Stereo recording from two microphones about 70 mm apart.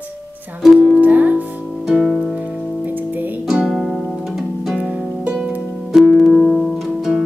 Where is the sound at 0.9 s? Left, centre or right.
Right.